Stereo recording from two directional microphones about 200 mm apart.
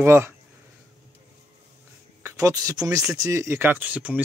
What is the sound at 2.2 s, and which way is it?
Speech, 15° right (ahead or behind).